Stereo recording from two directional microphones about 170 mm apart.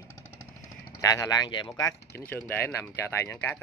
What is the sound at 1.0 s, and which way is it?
Speech, 20° left (ahead or behind).